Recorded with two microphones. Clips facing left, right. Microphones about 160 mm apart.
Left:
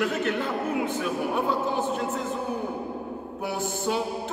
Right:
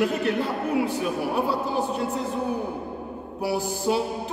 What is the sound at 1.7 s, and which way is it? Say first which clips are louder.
Speech: right 1 dB; 35° right (ahead or behind).